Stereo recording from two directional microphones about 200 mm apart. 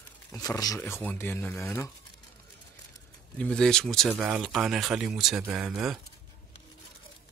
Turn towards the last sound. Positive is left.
turn(degrees=0)  # may be behind; listen again after turning